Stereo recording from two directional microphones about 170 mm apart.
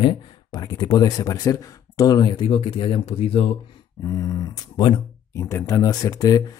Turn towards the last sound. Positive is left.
turn(degrees=20)  # may be behind; listen again after turning